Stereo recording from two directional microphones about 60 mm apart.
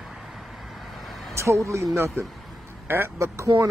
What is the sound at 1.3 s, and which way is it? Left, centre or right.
Speech, right.